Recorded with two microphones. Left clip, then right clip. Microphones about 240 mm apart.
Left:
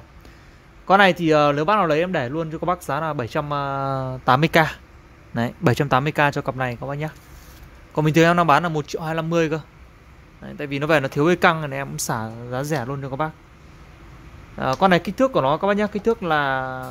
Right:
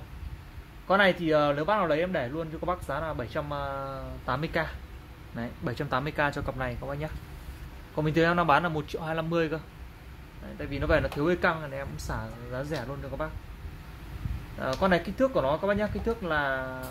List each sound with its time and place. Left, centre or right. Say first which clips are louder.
0.8 s speech: left 8 dB; left
10.6 s speech: left 7 dB; left
14.6 s speech: left 8 dB; left